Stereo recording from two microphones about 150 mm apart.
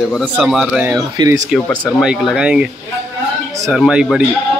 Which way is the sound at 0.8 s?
25° right (ahead or behind).